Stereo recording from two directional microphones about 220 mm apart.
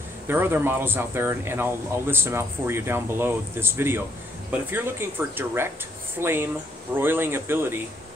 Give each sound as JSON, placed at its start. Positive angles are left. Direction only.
{"t": 0.3, "sound": "speech", "side_deg": -10}